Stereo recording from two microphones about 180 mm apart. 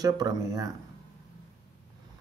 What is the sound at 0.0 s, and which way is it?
Speech, 20° right (ahead or behind).